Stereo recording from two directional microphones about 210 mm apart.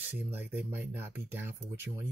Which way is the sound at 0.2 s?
10° right (ahead or behind).